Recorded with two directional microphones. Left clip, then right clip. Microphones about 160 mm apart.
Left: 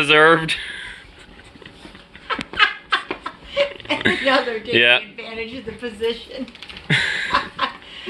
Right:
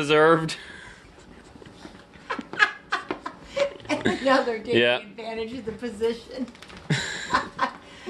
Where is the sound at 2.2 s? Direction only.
90° right.